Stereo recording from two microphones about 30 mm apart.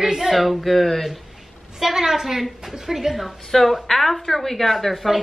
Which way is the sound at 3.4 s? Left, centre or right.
Centre.